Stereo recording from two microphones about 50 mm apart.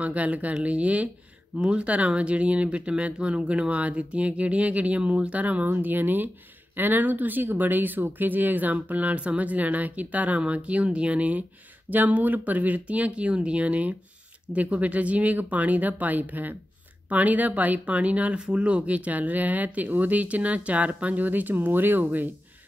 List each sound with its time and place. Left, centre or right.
0.0 s speech: right
5.7 s speech: right